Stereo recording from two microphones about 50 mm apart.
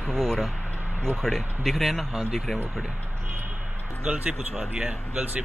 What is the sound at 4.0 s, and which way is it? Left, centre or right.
Speech, right.